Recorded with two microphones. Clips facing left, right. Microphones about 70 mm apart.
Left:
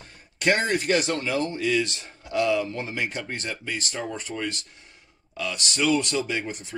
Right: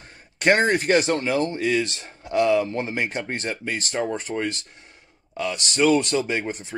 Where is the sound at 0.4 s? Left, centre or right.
Right.